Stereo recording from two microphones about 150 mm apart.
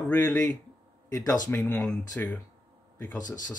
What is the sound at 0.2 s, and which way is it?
Speech, 25° left (ahead or behind).